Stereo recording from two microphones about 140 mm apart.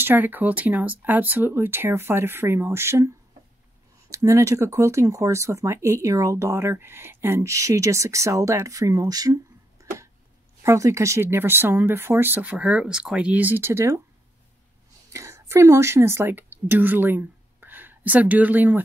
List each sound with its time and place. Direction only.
0.0 s speech: 15° right (ahead or behind)
4.1 s speech: 20° right (ahead or behind)
15.1 s a woman's voice: 20° right (ahead or behind)